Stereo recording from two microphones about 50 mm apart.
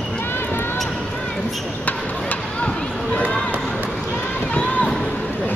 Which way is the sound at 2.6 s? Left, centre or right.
Centre.